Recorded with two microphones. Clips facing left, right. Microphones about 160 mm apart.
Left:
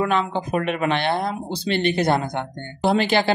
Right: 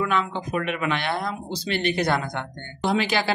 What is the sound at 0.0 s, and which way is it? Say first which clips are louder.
Speech: left 3 dB; 35° left (ahead or behind).